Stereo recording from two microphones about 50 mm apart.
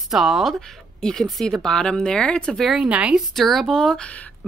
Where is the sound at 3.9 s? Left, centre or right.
Left.